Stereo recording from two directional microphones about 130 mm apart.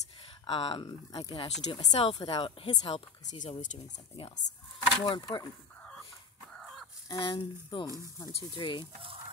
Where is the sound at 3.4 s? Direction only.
75° left (ahead or behind).